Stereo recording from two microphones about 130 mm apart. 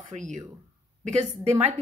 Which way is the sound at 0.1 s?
70° right (ahead or behind).